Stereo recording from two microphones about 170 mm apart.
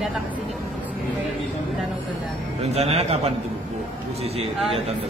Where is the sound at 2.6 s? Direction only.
40° right (ahead or behind).